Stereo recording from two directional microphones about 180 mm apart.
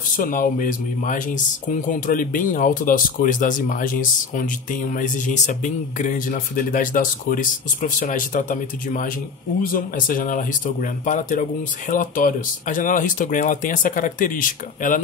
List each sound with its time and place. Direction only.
0.1 s speech: 50° left (ahead or behind)